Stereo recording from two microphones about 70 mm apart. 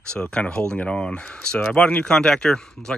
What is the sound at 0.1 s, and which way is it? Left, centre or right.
Speech, centre.